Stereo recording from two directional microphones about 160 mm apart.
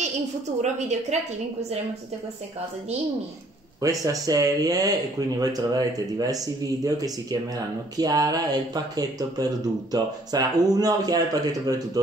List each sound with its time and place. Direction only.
0.6 s a woman's voice: 45° right (ahead or behind)
3.8 s speech: 20° right (ahead or behind)